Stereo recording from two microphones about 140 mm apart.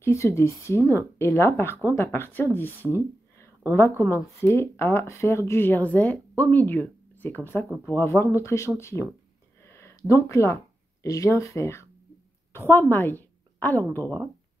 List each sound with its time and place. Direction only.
0.0 s speech: 20° left (ahead or behind)
9.6 s a sound: 20° left (ahead or behind)
12.5 s a woman's voice: 15° left (ahead or behind)